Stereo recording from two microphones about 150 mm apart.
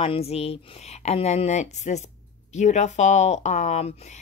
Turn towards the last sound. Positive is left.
turn(degrees=50)  # may be behind; listen again after turning